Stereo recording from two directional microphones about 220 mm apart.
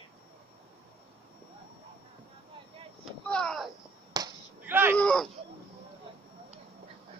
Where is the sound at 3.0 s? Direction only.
5° left (ahead or behind).